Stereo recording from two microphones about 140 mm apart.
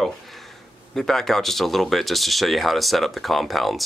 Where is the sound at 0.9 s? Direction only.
Centre (ahead or behind).